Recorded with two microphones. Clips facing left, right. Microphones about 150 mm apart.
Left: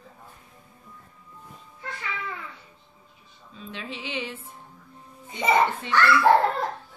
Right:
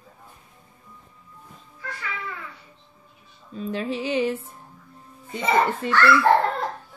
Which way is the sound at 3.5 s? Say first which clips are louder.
Right 10 dB; 40° right (ahead or behind).